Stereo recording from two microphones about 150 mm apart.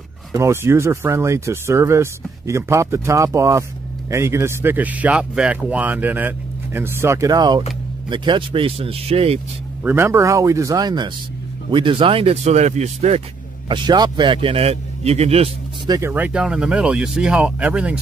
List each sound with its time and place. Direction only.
0.3 s a man's voice: 20° right (ahead or behind); by 9.4 s 40° right (ahead or behind)
9.8 s speech: 15° right (ahead or behind); by 13.2 s 45° right (ahead or behind)
13.7 s a man's voice: 30° right (ahead or behind)
15.9 s speech: 15° right (ahead or behind)